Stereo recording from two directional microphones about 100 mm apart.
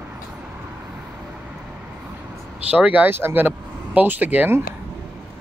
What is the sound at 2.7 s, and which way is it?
Speech, 15° right (ahead or behind).